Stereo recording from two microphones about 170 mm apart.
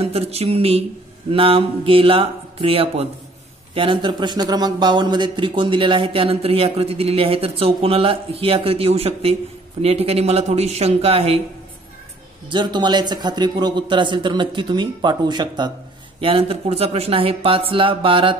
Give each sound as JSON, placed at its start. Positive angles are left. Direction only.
{"t": 0.0, "sound": "a man's voice", "side_deg": -35}
{"t": 12.4, "sound": "a man's voice", "side_deg": -25}